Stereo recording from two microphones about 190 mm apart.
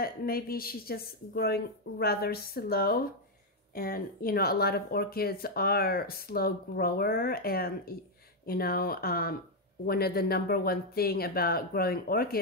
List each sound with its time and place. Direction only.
0.0 s speech: 50° left (ahead or behind)